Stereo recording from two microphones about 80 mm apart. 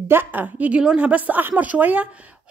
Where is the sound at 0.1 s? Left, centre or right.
Right.